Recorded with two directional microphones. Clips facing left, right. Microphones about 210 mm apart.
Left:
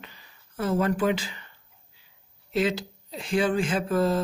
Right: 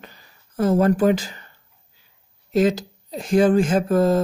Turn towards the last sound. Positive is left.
turn(degrees=-45)  # may be behind; listen again after turning